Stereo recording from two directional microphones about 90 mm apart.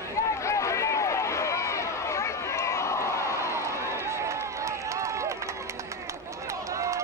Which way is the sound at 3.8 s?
30° right (ahead or behind).